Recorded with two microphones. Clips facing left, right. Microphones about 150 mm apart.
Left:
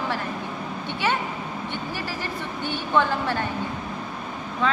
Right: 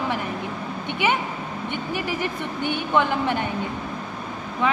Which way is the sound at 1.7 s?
15° right (ahead or behind).